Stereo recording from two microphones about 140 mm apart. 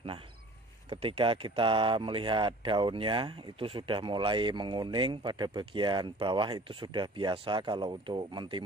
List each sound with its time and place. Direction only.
0.8 s speech: 40° right (ahead or behind)